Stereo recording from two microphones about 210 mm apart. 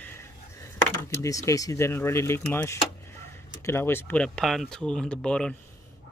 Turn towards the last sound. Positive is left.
turn(degrees=5)  # may be behind; listen again after turning